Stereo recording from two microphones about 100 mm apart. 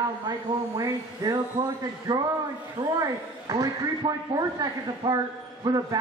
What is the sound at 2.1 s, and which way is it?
A man's voice, 50° right (ahead or behind).